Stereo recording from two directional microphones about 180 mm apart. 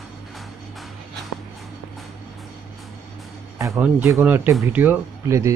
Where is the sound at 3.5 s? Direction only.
15° right (ahead or behind).